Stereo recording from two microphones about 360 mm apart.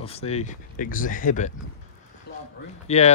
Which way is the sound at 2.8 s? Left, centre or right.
Centre.